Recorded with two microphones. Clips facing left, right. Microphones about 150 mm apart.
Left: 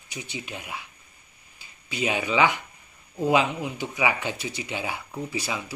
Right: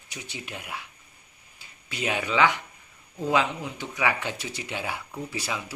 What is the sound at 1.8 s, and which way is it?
Speech, 5° left (ahead or behind).